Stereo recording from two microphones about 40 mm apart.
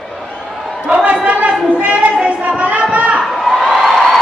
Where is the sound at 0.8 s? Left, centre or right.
Right.